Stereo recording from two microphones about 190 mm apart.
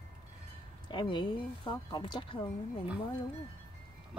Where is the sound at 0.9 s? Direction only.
25° left (ahead or behind).